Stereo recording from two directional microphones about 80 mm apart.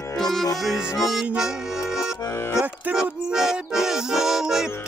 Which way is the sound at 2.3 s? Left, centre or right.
Left.